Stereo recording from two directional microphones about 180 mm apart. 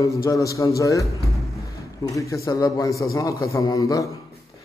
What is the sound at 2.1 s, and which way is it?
A man's voice, 20° left (ahead or behind).